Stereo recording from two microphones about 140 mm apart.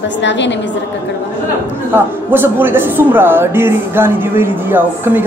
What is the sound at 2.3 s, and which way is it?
Speech, 15° right (ahead or behind).